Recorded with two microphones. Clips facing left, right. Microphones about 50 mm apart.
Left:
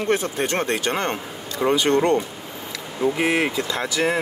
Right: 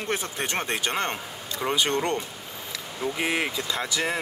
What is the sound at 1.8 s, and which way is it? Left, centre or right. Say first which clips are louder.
Speech: left 8 dB; left.